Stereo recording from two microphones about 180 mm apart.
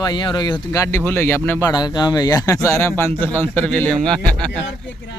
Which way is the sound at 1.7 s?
25° left (ahead or behind).